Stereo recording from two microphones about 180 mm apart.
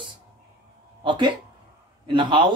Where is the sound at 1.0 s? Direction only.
25° right (ahead or behind).